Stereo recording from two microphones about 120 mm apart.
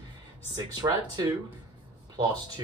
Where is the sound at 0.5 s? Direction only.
35° right (ahead or behind).